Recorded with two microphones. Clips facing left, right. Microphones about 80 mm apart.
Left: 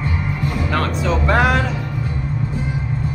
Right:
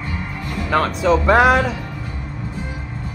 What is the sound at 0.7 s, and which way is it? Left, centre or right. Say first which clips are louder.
Music: right 6 dB; centre.